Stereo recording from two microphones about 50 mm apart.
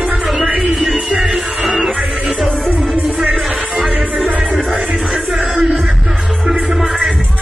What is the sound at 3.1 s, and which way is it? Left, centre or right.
Music, right.